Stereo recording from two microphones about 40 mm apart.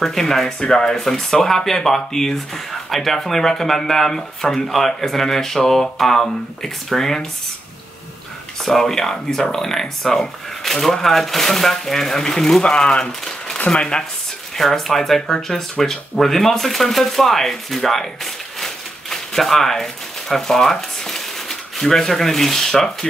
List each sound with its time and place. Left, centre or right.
0.0 s speech: centre
8.6 s speech: centre
12.6 s speech: left
14.6 s speech: centre